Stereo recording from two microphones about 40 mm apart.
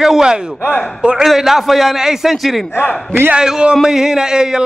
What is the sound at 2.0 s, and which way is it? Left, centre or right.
Speech, centre.